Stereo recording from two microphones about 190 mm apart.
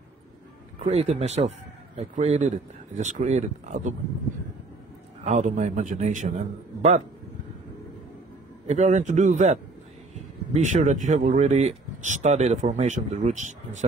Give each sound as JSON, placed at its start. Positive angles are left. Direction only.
{"t": 0.7, "sound": "speech", "side_deg": -35}
{"t": 5.2, "sound": "speech", "side_deg": -40}
{"t": 8.6, "sound": "speech", "side_deg": -40}